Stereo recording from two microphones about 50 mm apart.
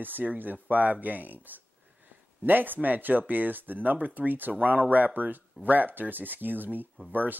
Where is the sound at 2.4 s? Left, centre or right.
Right.